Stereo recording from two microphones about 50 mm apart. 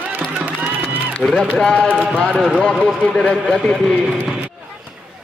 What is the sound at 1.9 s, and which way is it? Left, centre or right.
Speech, right.